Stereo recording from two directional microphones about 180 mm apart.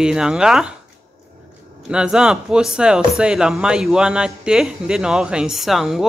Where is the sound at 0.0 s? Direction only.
5° right (ahead or behind).